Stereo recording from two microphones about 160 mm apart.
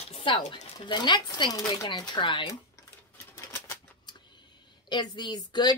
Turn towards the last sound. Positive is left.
turn(degrees=25)  # may be behind; listen again after turning